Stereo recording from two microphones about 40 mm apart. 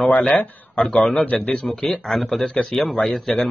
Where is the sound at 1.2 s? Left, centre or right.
Left.